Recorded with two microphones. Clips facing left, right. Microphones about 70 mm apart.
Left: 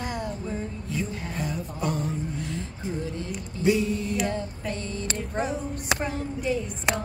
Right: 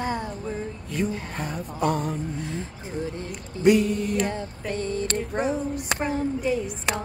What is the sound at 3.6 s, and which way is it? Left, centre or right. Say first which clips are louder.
Music: right 4 dB; right.